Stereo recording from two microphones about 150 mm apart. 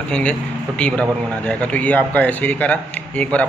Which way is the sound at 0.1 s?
5° left (ahead or behind).